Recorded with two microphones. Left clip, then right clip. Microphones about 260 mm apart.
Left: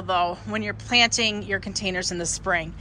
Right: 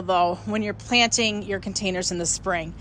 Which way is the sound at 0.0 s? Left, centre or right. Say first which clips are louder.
Right 2 dB; right.